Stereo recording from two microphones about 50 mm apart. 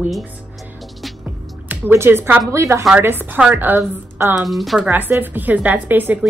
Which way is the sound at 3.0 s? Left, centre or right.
Right.